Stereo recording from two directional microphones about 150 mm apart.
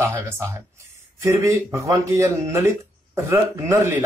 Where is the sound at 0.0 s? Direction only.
20° right (ahead or behind).